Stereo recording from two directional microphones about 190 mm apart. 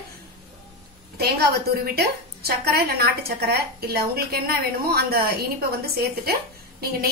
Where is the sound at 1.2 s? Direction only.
55° right (ahead or behind).